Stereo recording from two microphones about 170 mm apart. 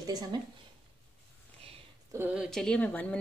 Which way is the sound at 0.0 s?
20° right (ahead or behind).